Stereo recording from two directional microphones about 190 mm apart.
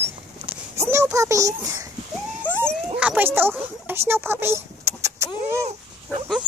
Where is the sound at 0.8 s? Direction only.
15° right (ahead or behind).